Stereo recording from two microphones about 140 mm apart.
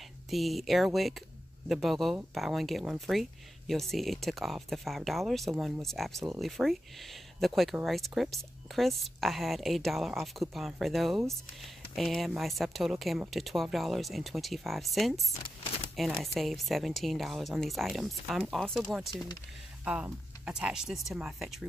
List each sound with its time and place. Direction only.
0.3 s speech: centre (ahead or behind)
15.6 s a sound: 45° left (ahead or behind)
16.0 s speech: centre (ahead or behind)